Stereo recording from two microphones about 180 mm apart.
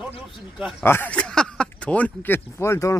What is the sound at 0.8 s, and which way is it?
Speech, 10° left (ahead or behind).